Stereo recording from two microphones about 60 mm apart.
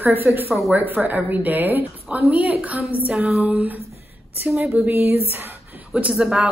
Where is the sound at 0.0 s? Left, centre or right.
Right.